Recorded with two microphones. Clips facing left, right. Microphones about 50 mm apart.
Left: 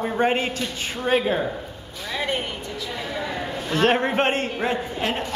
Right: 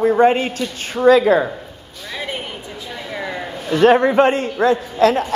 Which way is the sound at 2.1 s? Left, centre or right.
Centre.